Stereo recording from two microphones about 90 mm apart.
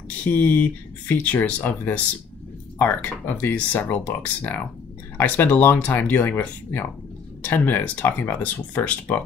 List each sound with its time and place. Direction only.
0.2 s speech: 20° left (ahead or behind)